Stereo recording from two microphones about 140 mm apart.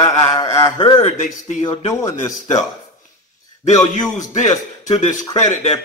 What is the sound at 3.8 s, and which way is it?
Speech, 30° left (ahead or behind).